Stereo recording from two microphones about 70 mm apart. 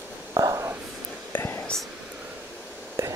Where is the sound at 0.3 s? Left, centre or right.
Right.